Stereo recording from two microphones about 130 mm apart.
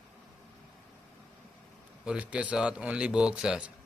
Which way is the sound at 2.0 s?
10° right (ahead or behind).